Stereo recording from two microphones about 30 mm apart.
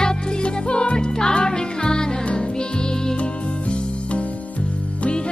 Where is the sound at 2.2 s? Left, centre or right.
Left.